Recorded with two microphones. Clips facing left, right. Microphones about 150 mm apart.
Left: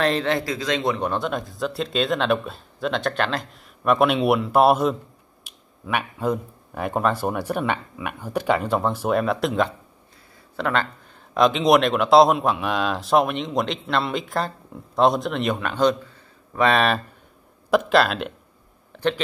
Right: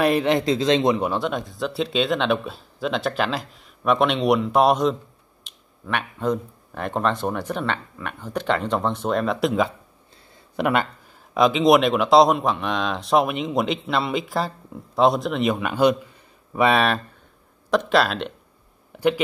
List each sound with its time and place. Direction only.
0.0 s speech: 15° right (ahead or behind)
0.9 s speech: 5° right (ahead or behind)
10.5 s speech: 15° right (ahead or behind)
11.3 s speech: centre (ahead or behind)
18.9 s speech: 10° right (ahead or behind)